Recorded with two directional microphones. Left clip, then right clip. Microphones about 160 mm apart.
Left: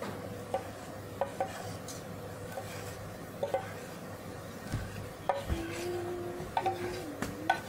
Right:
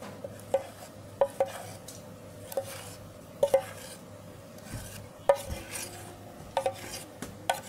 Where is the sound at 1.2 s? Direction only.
55° right (ahead or behind).